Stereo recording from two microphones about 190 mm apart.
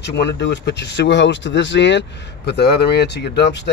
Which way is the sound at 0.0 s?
65° left (ahead or behind).